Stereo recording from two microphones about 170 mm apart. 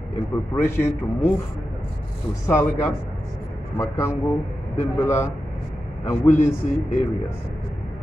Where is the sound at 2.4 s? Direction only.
15° left (ahead or behind).